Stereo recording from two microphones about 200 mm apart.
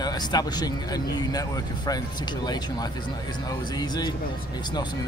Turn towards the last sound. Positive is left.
turn(degrees=20)  # may be behind; listen again after turning